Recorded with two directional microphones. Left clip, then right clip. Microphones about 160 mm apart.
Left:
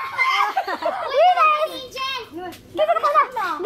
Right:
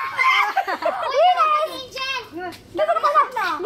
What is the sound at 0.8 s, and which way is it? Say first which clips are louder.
Snicker: left 1 dB; centre (ahead or behind).